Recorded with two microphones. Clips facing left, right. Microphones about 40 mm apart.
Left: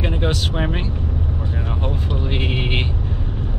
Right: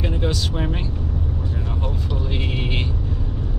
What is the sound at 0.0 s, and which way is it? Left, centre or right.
Speech, left.